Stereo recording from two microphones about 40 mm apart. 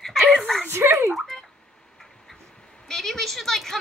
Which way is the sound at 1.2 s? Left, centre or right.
Centre.